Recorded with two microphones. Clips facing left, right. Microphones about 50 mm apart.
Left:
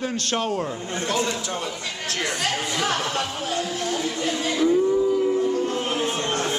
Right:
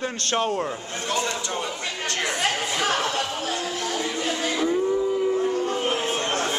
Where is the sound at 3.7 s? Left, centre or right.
Right.